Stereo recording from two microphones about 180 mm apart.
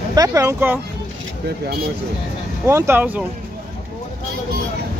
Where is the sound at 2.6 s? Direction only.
15° right (ahead or behind).